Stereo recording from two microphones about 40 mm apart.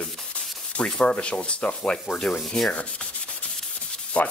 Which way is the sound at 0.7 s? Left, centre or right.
Left.